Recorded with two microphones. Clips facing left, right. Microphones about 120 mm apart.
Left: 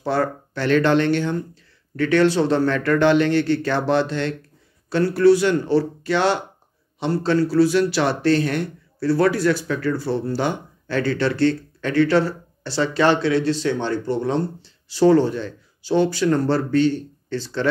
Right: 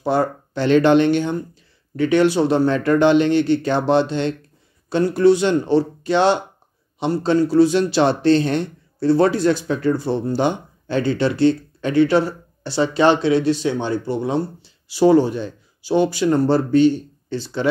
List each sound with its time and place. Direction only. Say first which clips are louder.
0.0 s speech: right 2 dB; 15° right (ahead or behind)